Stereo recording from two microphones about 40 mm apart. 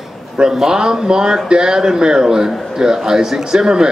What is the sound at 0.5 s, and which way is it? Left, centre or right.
A man's voice, centre.